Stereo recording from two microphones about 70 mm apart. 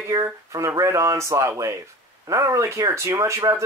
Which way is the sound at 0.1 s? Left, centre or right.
Right.